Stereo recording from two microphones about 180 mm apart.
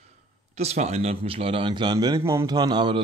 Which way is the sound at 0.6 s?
35° right (ahead or behind).